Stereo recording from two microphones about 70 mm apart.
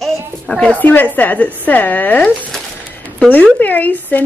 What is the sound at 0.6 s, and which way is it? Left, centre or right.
Speech, left.